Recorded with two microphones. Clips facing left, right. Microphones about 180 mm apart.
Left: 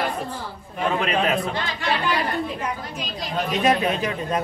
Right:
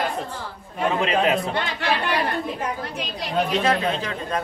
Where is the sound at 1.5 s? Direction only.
65° right (ahead or behind).